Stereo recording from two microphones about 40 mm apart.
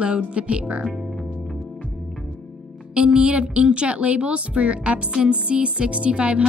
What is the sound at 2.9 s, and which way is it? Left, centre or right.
A woman's voice, right.